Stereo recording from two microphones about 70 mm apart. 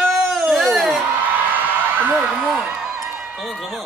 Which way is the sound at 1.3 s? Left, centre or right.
Right.